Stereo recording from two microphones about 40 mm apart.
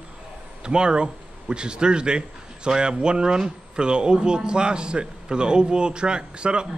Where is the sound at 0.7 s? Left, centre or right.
Right.